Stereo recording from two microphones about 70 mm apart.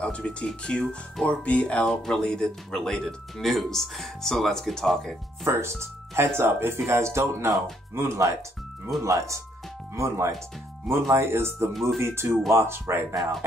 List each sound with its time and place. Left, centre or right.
0.0 s speech: centre
1.9 s speech: centre
5.4 s speech: right
11.7 s speech: centre
12.0 s speech: right